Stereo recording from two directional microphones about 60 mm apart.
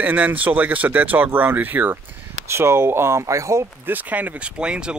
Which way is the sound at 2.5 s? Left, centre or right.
Right.